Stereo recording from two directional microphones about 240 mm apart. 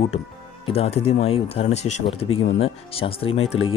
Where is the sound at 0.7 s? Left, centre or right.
Left.